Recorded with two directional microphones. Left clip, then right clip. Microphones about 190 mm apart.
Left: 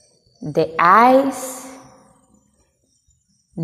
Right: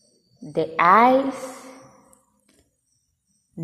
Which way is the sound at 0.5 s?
20° left (ahead or behind).